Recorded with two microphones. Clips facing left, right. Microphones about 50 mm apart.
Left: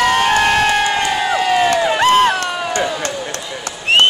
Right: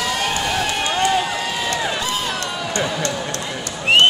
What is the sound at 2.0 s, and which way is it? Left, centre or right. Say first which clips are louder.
Crowd: left 11 dB; left.